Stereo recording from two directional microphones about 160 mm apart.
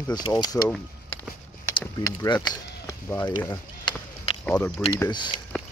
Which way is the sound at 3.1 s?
15° left (ahead or behind).